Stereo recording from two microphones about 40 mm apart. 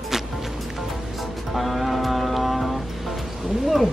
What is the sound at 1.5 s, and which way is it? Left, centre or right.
Music, centre.